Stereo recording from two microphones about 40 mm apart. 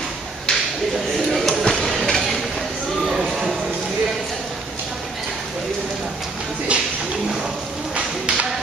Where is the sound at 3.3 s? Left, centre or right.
Centre.